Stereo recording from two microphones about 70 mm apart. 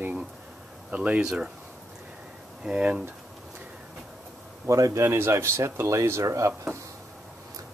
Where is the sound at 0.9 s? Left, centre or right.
Centre.